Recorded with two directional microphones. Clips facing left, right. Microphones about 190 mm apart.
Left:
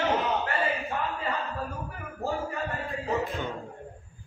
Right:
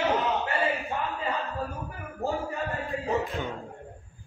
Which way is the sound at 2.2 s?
15° right (ahead or behind).